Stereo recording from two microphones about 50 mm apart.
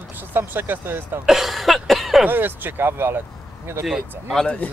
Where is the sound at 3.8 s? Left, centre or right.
Centre.